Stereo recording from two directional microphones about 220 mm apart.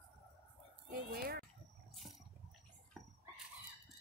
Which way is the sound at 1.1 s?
45° right (ahead or behind).